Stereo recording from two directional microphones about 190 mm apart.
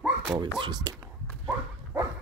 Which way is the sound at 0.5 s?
20° right (ahead or behind).